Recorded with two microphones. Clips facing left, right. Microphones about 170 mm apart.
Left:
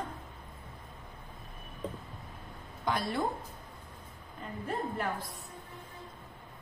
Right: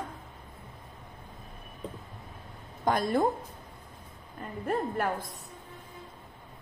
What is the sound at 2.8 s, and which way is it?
Speech, 45° right (ahead or behind).